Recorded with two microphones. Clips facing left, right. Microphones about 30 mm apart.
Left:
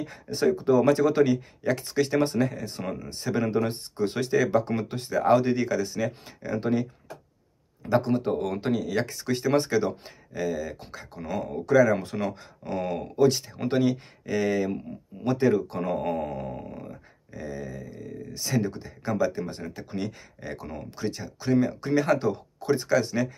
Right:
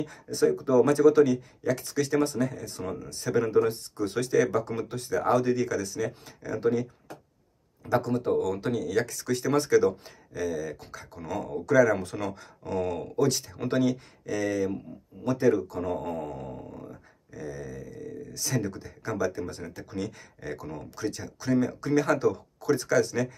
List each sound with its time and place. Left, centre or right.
0.0 s speech: left
2.2 s speech: left
4.5 s speech: left
4.7 s a sound: left
14.2 s speech: left
16.5 s a sound: left